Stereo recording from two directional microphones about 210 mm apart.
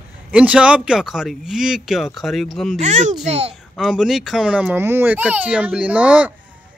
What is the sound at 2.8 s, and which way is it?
Speech, 35° right (ahead or behind).